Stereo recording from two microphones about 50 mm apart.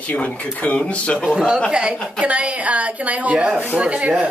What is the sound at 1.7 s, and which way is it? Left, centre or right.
A woman's voice, right.